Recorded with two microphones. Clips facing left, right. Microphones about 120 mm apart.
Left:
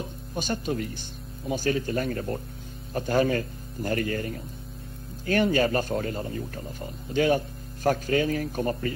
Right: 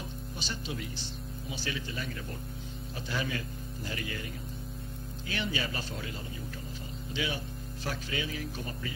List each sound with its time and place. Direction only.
0.4 s speech: 50° left (ahead or behind)